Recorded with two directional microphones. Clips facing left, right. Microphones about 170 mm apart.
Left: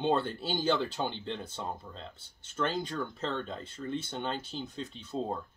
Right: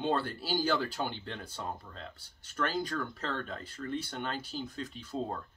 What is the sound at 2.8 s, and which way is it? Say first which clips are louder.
Speech: left 1 dB; 25° left (ahead or behind).